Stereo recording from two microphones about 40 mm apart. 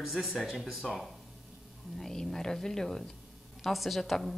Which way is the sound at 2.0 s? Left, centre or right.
Centre.